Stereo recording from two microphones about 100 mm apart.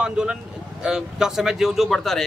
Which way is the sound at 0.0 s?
10° right (ahead or behind).